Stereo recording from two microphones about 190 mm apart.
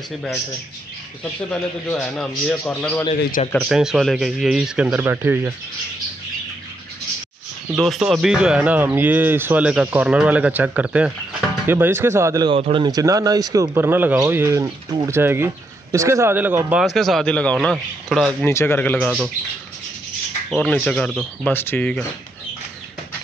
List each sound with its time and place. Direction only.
1.2 s a man's voice: 5° left (ahead or behind)
3.2 s speech: 45° left (ahead or behind)
3.5 s a man's voice: centre (ahead or behind)
7.7 s speech: centre (ahead or behind); by 12.5 s 15° right (ahead or behind)
12.5 s a man's voice: 30° right (ahead or behind); by 19.3 s centre (ahead or behind)
20.4 s a man's voice: 5° left (ahead or behind)